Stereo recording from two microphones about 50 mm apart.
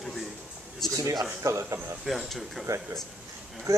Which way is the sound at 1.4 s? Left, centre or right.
Right.